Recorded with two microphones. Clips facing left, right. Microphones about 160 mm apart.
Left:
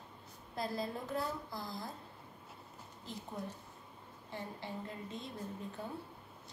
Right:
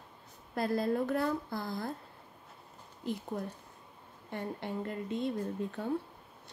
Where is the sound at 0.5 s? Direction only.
60° right (ahead or behind).